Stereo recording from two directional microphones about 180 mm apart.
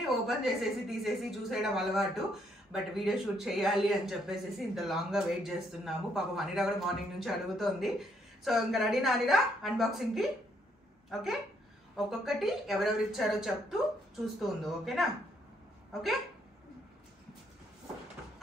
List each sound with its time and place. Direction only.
0.1 s speech: centre (ahead or behind)
12.1 s speech: centre (ahead or behind)